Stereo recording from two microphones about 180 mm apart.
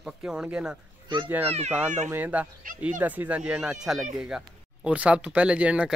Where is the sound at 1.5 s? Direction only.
35° right (ahead or behind).